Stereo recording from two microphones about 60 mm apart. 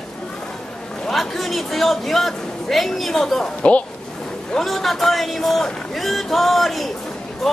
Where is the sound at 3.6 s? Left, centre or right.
Left.